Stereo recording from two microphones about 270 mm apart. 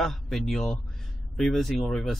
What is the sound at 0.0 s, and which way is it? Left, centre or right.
Speech, centre.